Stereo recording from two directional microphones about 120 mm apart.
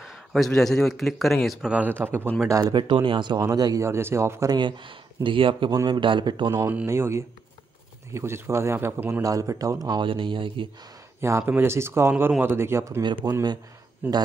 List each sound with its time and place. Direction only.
0.0 s a man's voice: centre (ahead or behind)
1.7 s speech: 15° right (ahead or behind)
2.6 s speech: 40° right (ahead or behind); by 4.6 s 25° right (ahead or behind)
4.6 s speech: 40° right (ahead or behind)
6.9 s speech: 25° right (ahead or behind)
9.2 s speech: 30° right (ahead or behind); by 10.7 s 45° right (ahead or behind)
11.1 s speech: 20° right (ahead or behind)
13.0 s speech: 35° right (ahead or behind)
14.0 s speech: 15° right (ahead or behind)